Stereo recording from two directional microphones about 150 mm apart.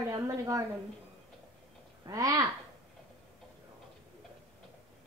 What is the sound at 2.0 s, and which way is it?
Speech, 25° right (ahead or behind).